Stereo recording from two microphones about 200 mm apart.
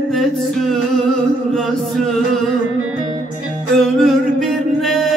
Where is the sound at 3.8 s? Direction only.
Centre (ahead or behind).